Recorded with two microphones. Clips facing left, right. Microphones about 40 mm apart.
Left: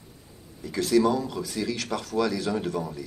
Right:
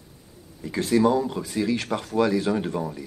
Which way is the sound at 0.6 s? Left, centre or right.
Right.